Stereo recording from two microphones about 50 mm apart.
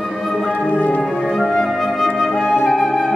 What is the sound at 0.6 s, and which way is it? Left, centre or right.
Music, left.